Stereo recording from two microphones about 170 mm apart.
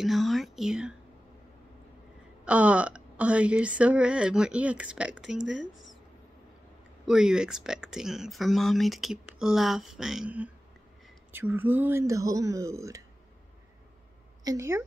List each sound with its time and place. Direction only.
0.0 s speech: centre (ahead or behind)
2.4 s speech: 5° right (ahead or behind)
7.1 s speech: 5° right (ahead or behind)
14.4 s speech: 20° right (ahead or behind)